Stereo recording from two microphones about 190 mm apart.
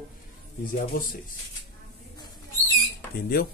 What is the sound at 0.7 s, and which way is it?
Speech, 45° left (ahead or behind).